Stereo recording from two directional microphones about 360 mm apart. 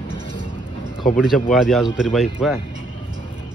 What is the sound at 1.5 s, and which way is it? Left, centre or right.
Speech, centre.